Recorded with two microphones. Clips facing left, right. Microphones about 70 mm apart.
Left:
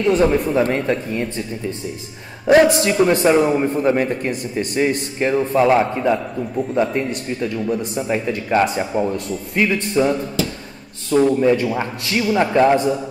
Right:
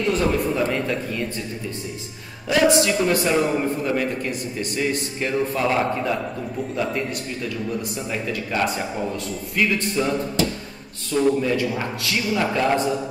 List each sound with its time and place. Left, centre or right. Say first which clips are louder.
0.0 s a man's voice: left 5 dB; left
2.4 s a man's voice: left 5 dB; left
5.8 s a man's voice: left 5 dB; left
11.3 s a man's voice: left 6 dB; left